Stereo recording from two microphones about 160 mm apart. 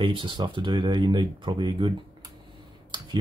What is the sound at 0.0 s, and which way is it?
Speech, 30° right (ahead or behind).